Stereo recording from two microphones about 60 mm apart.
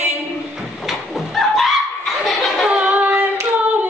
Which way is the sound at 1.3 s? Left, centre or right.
Centre.